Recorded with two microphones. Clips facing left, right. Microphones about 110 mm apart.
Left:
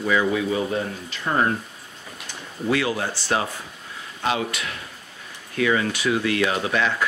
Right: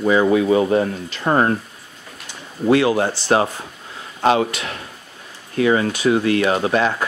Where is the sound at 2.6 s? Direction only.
35° right (ahead or behind).